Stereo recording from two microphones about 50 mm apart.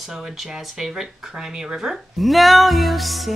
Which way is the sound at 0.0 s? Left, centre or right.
Centre.